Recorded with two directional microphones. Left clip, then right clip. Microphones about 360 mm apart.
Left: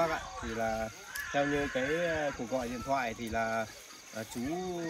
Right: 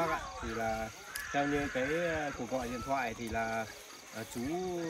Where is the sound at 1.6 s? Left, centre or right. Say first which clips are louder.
Left 2 dB; centre.